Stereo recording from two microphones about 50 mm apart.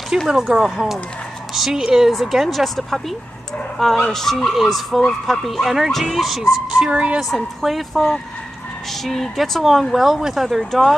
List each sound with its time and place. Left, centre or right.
0.3 s speech: centre
6.7 s speech: centre
7.6 s speech: centre